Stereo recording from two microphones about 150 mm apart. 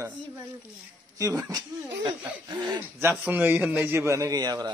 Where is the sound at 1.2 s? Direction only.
25° right (ahead or behind).